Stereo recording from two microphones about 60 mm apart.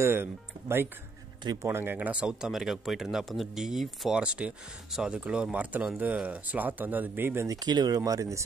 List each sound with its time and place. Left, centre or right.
0.0 s speech: right
2.0 s speech: centre
4.1 s speech: centre; by 7.4 s right
7.4 s speech: right